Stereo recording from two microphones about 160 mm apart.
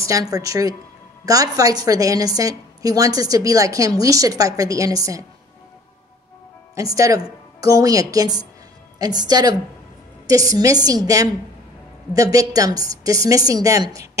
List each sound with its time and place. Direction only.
0.0 s a woman's voice: 20° right (ahead or behind)
6.7 s a woman's voice: 20° right (ahead or behind)